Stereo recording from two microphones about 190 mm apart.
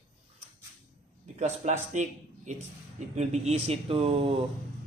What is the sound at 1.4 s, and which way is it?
Speech, 40° right (ahead or behind).